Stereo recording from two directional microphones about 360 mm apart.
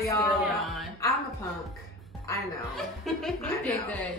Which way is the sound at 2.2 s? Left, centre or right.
Centre.